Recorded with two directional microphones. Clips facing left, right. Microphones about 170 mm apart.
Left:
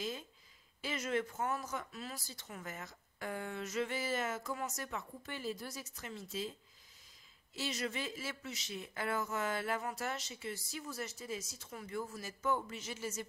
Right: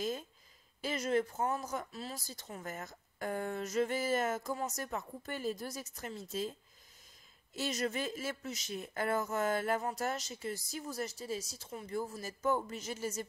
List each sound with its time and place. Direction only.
0.7 s speech: 40° right (ahead or behind)
7.5 s speech: 45° right (ahead or behind)